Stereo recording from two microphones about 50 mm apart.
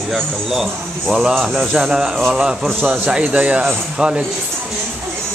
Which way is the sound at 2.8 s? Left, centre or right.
Right.